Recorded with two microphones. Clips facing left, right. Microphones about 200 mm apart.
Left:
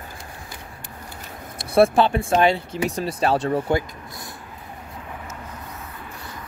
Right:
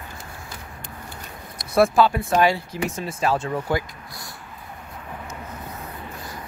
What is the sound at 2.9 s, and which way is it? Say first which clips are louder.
Speech: left 3 dB; 35° left (ahead or behind).